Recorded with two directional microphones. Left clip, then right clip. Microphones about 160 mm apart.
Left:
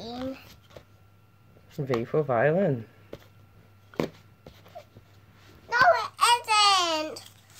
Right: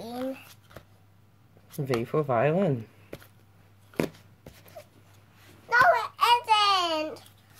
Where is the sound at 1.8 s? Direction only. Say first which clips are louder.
Left 1 dB; 10° right (ahead or behind).